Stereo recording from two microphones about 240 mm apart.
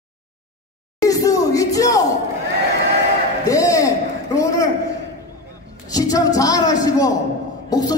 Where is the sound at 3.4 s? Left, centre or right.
Centre.